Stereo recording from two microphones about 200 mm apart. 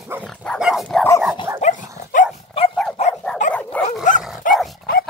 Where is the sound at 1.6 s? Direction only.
40° left (ahead or behind).